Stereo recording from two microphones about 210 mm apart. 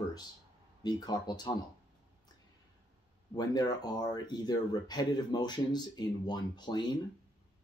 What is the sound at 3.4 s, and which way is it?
Speech, 20° left (ahead or behind).